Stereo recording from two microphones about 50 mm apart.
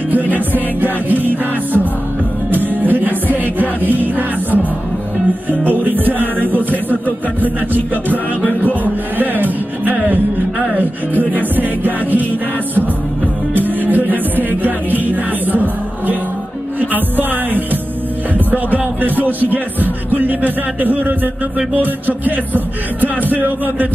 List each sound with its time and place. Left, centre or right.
0.1 s music: right
2.5 s music: right
5.5 s music: right
8.5 s music: left
9.2 s music: right
13.5 s music: right